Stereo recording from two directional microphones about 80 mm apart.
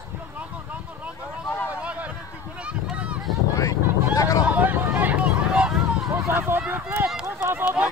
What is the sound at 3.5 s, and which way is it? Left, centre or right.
Vehicle, left.